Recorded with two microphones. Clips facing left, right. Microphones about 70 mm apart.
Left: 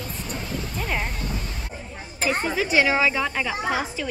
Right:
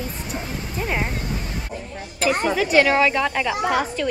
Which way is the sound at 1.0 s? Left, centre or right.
Right.